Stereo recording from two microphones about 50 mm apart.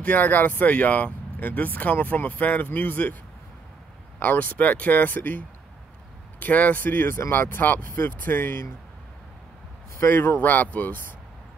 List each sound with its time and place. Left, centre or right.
0.0 s speech: left
4.2 s speech: left
6.4 s speech: left
9.9 s speech: left